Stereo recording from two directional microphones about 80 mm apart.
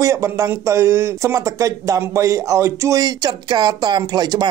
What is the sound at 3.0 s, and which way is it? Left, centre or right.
Speech, right.